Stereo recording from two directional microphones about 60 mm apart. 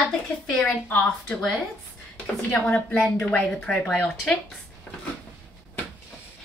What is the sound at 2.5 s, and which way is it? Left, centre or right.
Speech, left.